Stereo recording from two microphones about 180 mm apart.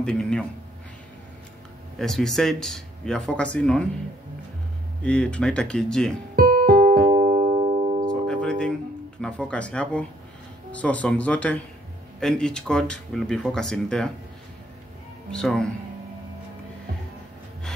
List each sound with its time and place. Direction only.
0.0 s a sound: 5° left (ahead or behind)
2.0 s speech: centre (ahead or behind)
5.0 s speech: 5° left (ahead or behind)
6.3 s music: 55° right (ahead or behind)
7.1 s music: 40° right (ahead or behind)
8.1 s music: 5° left (ahead or behind)
9.2 s speech: 5° left (ahead or behind)
15.3 s speech: 5° left (ahead or behind)